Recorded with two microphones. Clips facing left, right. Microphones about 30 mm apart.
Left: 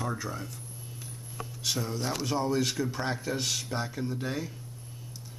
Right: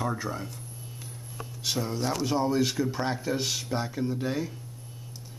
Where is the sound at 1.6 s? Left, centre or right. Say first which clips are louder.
Right 3 dB; centre.